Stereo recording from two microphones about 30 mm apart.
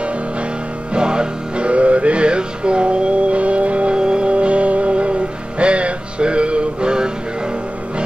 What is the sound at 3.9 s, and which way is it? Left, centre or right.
Music, right.